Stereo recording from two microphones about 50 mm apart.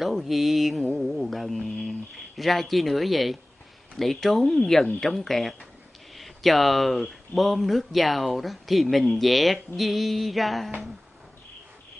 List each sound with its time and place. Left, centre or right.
0.0 s speech: centre